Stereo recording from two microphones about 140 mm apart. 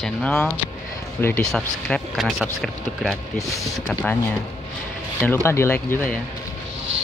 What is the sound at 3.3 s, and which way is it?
Speech, 20° left (ahead or behind).